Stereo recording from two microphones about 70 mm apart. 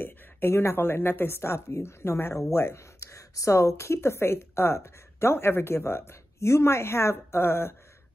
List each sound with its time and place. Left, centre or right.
0.0 s speech: left